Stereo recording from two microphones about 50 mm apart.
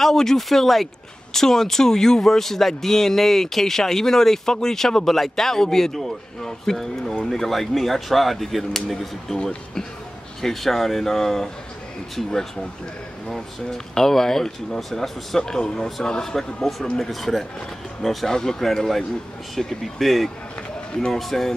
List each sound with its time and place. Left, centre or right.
0.0 s speech: centre
9.4 s speech: centre
10.4 s speech: centre
13.3 s speech: centre